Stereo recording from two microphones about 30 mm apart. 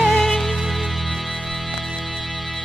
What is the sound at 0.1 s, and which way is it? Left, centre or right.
Music, centre.